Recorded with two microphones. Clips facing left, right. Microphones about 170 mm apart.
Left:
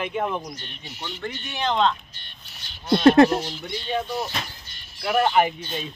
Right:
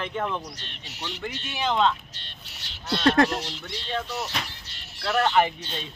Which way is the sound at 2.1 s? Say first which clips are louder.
Right 2 dB; 85° right.